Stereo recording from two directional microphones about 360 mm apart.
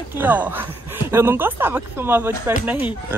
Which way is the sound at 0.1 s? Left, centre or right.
Centre.